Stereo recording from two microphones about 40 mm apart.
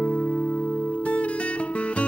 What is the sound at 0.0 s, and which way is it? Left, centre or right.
Music, left.